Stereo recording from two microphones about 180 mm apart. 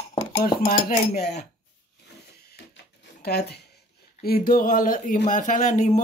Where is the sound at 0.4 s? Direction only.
55° left (ahead or behind).